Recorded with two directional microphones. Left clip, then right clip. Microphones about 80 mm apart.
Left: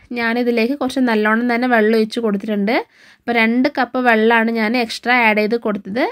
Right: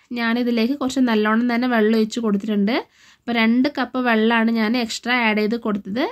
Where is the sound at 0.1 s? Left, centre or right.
Left.